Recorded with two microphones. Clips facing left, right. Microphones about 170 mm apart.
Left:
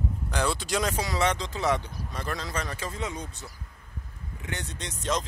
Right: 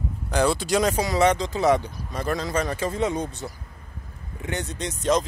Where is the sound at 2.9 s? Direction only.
60° right (ahead or behind).